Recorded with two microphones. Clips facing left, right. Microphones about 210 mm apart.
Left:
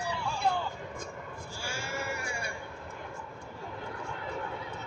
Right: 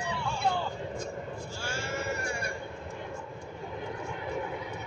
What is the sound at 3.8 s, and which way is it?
Vehicle, 15° right (ahead or behind).